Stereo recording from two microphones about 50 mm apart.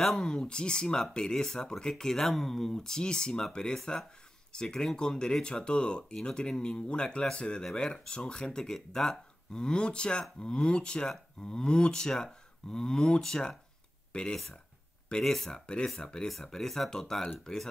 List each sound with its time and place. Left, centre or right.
0.0 s speech: centre
9.6 s speech: centre